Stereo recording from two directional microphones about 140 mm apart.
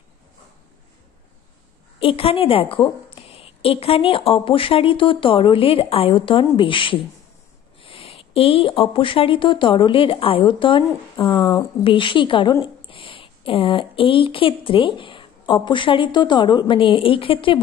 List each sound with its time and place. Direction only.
2.0 s speech: 40° left (ahead or behind)